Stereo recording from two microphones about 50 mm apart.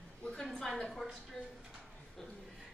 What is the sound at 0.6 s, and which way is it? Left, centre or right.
Speech, centre.